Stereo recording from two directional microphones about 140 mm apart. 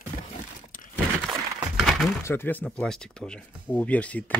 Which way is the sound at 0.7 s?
75° left (ahead or behind).